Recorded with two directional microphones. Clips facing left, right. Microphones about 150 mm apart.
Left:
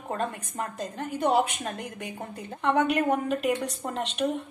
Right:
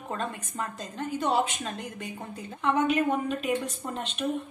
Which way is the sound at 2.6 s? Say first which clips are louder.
Left 1 dB; 65° left (ahead or behind).